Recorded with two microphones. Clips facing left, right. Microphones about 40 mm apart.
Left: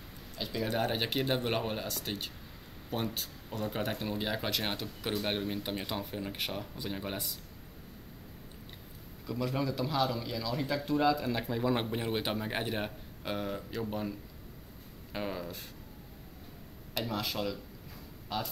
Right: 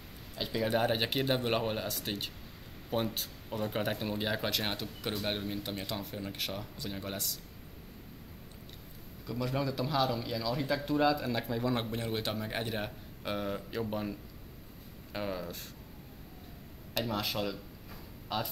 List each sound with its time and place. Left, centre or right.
0.4 s speech: centre
9.2 s speech: centre
15.1 s speech: centre
16.9 s speech: centre